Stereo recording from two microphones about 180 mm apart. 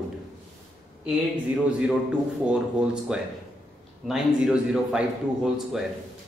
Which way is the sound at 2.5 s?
5° right (ahead or behind).